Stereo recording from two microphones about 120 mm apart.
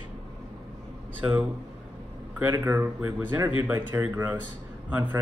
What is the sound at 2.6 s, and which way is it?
A man's voice, 20° right (ahead or behind).